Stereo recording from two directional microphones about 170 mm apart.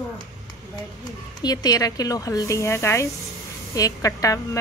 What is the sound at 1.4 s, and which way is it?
A woman's voice, 25° left (ahead or behind).